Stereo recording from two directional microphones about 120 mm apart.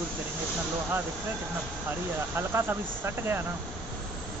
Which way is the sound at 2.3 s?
20° right (ahead or behind).